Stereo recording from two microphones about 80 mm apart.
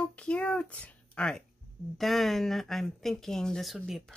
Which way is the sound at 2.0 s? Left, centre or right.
Centre.